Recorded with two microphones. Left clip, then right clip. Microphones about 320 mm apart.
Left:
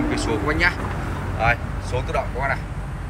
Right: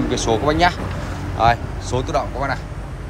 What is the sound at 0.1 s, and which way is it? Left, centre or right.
Speech, right.